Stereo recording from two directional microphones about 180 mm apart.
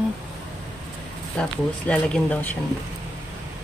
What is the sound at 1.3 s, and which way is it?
Speech, 5° left (ahead or behind).